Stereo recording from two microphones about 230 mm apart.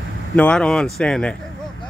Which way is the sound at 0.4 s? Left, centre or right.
Centre.